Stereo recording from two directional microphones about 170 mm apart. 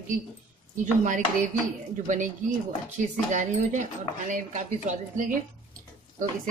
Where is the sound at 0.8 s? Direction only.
45° right (ahead or behind).